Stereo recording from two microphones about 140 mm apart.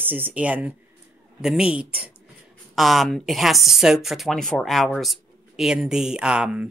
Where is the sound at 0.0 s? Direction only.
15° right (ahead or behind).